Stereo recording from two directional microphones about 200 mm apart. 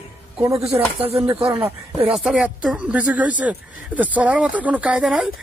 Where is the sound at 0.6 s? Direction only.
30° right (ahead or behind).